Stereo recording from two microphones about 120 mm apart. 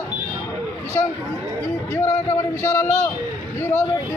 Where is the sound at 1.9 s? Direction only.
25° left (ahead or behind).